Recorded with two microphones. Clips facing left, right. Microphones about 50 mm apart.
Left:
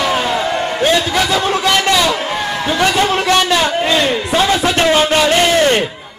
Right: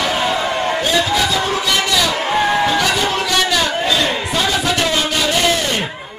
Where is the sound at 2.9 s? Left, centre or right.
Left.